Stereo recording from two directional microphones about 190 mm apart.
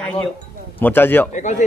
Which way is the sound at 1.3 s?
40° left (ahead or behind).